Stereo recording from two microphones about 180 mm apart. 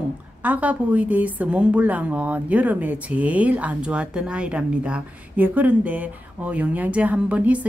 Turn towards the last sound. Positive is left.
turn(degrees=-10)  # may be behind; listen again after turning